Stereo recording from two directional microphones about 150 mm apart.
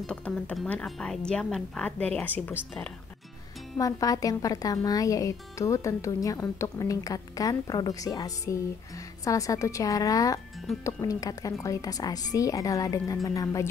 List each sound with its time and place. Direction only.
0.0 s speech: 5° left (ahead or behind)
3.7 s speech: 25° left (ahead or behind)